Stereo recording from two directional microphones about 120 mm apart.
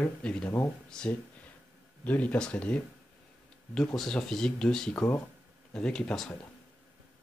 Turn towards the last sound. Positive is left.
turn(degrees=5)  # may be behind; listen again after turning